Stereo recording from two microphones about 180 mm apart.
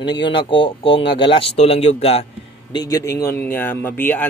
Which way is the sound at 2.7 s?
20° left (ahead or behind).